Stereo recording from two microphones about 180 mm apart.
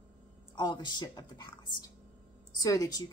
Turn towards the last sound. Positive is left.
turn(degrees=20)  # may be behind; listen again after turning